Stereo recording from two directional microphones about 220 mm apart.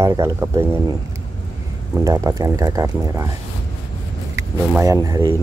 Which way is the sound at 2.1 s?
15° right (ahead or behind).